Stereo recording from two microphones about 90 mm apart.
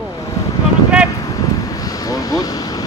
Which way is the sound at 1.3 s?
40° left (ahead or behind).